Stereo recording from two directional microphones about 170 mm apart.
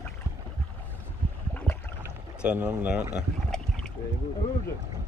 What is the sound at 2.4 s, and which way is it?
Speech, 10° right (ahead or behind).